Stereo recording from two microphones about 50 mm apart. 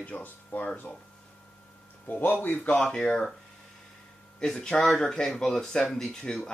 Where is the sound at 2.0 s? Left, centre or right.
Left.